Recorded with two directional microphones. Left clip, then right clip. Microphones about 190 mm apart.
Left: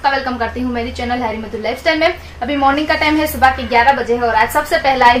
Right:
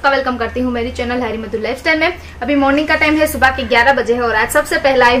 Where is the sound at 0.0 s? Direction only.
5° right (ahead or behind).